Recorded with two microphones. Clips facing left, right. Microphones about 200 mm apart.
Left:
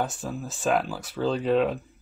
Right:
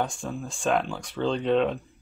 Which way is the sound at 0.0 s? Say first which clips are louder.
Even; 5° left (ahead or behind).